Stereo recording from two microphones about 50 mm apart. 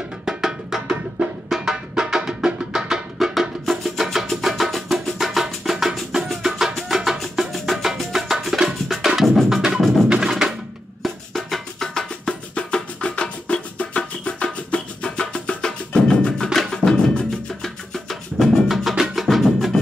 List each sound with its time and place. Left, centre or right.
0.2 s music: centre
17.6 s music: centre